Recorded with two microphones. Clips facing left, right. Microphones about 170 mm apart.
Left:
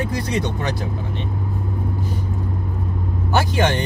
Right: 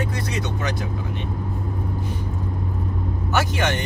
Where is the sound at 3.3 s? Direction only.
35° left (ahead or behind).